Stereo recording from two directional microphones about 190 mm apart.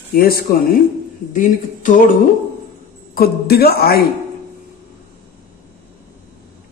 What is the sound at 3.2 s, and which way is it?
Speech, 55° left (ahead or behind).